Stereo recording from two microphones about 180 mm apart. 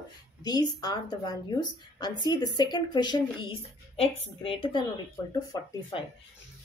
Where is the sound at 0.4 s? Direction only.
20° left (ahead or behind).